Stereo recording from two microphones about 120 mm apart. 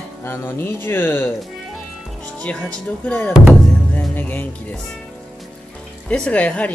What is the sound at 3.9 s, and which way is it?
Music, 15° left (ahead or behind).